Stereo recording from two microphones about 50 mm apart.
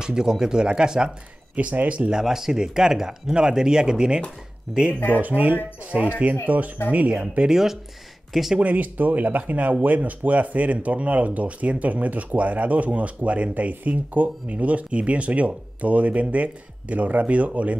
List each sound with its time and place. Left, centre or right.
0.0 s speech: centre
1.5 s speech: right
2.1 s speech: centre
4.9 s speech: left
5.2 s speech: right
5.9 s speech: right
7.4 s speech: centre
8.5 s speech: right